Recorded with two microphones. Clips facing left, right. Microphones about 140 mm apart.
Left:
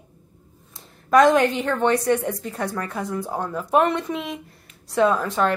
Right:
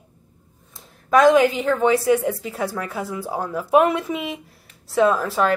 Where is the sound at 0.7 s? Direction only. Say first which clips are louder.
Left 1 dB; centre (ahead or behind).